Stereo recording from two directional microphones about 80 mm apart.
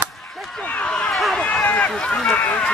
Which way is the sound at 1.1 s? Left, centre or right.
Centre.